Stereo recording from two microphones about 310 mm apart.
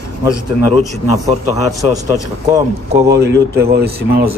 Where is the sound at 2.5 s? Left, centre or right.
Centre.